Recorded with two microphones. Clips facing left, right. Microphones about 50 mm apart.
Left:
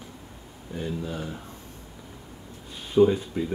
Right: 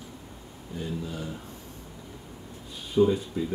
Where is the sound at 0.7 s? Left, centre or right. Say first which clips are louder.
Left 2 dB; left.